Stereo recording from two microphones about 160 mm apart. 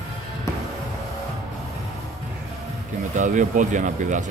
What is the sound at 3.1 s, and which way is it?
Speech, 50° right (ahead or behind).